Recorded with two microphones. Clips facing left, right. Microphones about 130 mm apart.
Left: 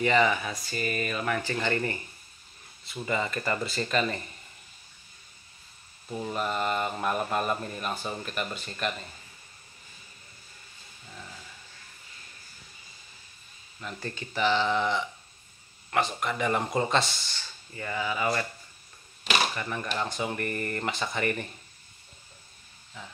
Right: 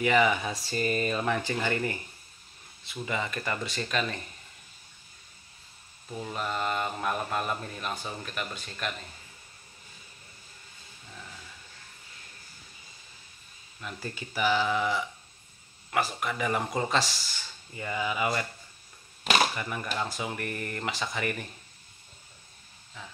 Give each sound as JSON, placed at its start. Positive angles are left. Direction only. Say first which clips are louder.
{"t": 0.0, "sound": "speech", "louder": "even", "side_deg": -10}
{"t": 0.7, "sound": "speech", "louder": "right 3 dB", "side_deg": -30}
{"t": 6.1, "sound": "speech", "louder": "left 3 dB", "side_deg": 5}
{"t": 13.7, "sound": "speech", "louder": "left 1 dB", "side_deg": -5}
{"t": 17.7, "sound": "speech", "louder": "even", "side_deg": -15}
{"t": 19.5, "sound": "speech", "louder": "left 1 dB", "side_deg": -10}